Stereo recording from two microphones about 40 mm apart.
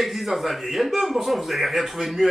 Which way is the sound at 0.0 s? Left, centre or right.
Centre.